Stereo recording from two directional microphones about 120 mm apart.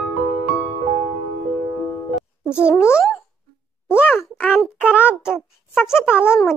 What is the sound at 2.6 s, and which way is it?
Speech, 20° left (ahead or behind).